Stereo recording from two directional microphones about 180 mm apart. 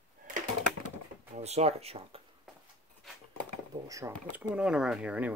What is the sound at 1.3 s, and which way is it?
Speech, 35° right (ahead or behind).